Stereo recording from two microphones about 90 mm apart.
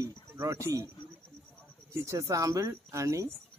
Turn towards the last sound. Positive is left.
turn(degrees=-35)  # may be behind; listen again after turning